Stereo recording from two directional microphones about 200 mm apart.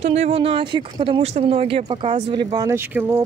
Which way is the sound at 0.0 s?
35° right (ahead or behind).